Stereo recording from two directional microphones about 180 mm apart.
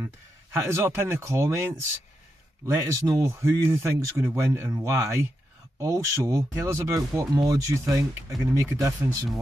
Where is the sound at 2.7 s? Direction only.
15° right (ahead or behind).